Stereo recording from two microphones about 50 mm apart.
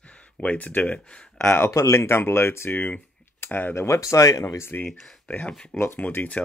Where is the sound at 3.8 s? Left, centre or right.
Left.